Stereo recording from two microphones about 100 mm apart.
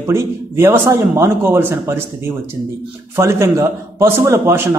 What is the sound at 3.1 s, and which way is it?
Speech, 30° right (ahead or behind).